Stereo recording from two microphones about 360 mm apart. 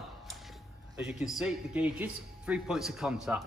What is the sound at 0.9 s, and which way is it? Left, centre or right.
A man's voice, centre.